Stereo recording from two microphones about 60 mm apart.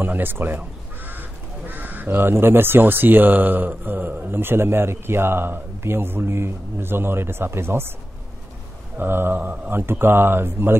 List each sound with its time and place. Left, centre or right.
0.0 s crow: right
1.7 s speech: right
8.9 s speech: right